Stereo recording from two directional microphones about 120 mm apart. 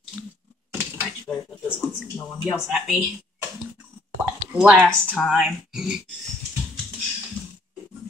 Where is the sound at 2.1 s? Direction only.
20° left (ahead or behind).